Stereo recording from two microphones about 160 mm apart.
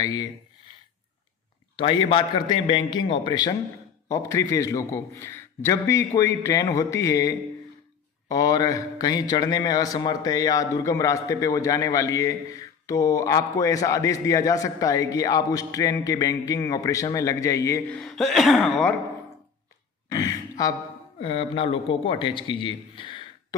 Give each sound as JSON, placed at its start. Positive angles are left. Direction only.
{"t": 0.0, "sound": "speech", "side_deg": 25}
{"t": 1.8, "sound": "a man's voice", "side_deg": 30}
{"t": 17.8, "sound": "speech", "side_deg": 5}
{"t": 20.1, "sound": "a sound", "side_deg": 25}
{"t": 21.2, "sound": "a man's voice", "side_deg": 35}